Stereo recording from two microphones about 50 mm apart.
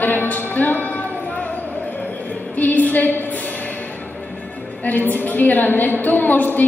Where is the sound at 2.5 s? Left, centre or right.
Left.